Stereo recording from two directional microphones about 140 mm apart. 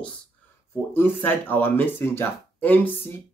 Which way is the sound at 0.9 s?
15° left (ahead or behind).